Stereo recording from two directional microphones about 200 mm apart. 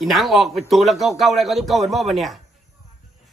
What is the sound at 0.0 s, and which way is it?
A man's voice, centre (ahead or behind).